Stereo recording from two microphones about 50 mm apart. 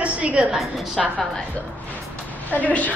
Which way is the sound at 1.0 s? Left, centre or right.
Centre.